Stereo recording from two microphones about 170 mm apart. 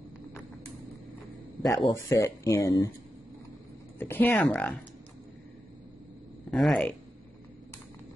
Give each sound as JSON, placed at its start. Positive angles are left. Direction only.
{"t": 1.6, "sound": "speech", "side_deg": 20}
{"t": 4.0, "sound": "speech", "side_deg": 10}
{"t": 6.5, "sound": "speech", "side_deg": 5}